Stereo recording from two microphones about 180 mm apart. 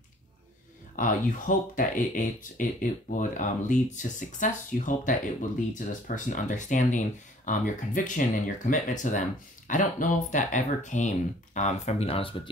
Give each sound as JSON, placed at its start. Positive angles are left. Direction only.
{"t": 0.9, "sound": "speech", "side_deg": 45}